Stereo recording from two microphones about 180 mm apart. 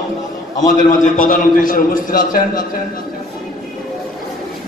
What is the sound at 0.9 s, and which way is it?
A man's voice, 50° left (ahead or behind).